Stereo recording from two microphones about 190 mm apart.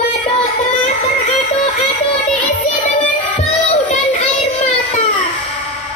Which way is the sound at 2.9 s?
40° left (ahead or behind).